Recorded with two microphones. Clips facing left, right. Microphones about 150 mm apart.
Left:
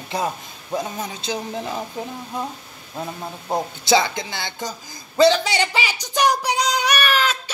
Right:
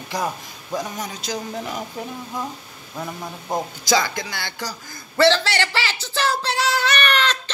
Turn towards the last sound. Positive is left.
turn(degrees=5)  # may be behind; listen again after turning